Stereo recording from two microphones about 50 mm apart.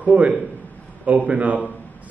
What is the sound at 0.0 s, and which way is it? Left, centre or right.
A man's voice, right.